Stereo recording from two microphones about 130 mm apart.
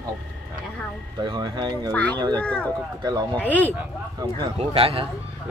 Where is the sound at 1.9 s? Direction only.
10° left (ahead or behind).